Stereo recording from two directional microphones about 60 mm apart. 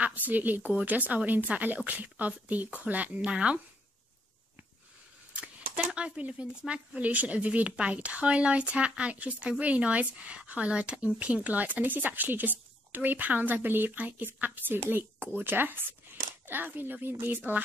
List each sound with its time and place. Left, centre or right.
0.3 s speech: right
5.3 s speech: right
7.0 s speech: right
17.4 s speech: right